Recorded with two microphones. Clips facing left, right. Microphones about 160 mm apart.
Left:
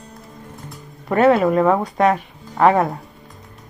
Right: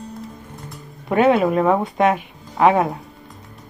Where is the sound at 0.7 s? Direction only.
Centre (ahead or behind).